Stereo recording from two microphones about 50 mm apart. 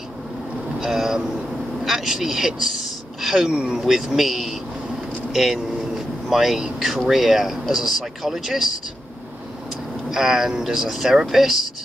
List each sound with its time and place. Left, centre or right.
0.7 s speech: centre
3.5 s speech: centre
10.1 s speech: centre